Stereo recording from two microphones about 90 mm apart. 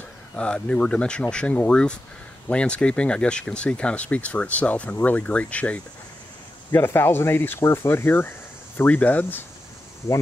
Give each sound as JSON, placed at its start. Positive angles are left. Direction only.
{"t": 0.4, "sound": "speech", "side_deg": 10}
{"t": 6.7, "sound": "speech", "side_deg": 25}